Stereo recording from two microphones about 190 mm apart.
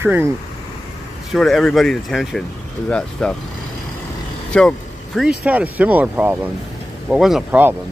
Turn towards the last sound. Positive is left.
turn(degrees=-5)  # may be behind; listen again after turning